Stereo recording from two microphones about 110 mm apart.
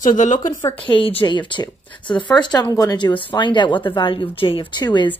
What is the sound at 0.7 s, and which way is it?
Speech, 55° left (ahead or behind).